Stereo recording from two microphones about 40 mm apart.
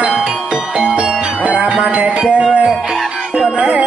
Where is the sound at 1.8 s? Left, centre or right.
Right.